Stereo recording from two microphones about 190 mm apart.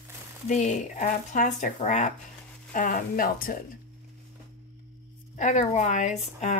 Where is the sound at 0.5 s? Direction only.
35° left (ahead or behind).